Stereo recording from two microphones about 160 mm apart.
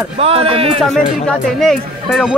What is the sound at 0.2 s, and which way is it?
Speech, 35° right (ahead or behind).